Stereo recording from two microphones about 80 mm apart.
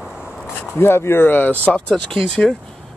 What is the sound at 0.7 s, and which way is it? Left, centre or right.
Speech, left.